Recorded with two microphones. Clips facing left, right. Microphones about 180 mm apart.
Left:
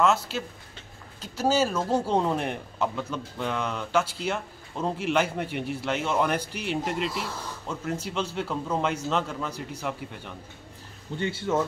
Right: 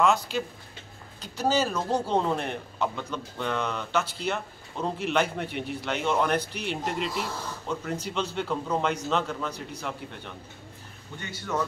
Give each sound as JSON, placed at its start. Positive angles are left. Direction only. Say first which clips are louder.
{"t": 0.0, "sound": "a man's voice", "louder": "even", "side_deg": 5}
{"t": 11.1, "sound": "speech", "louder": "left 9 dB", "side_deg": 30}